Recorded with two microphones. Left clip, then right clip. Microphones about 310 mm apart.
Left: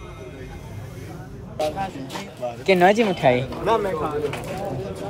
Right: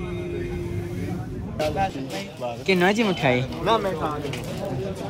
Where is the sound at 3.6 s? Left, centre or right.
Right.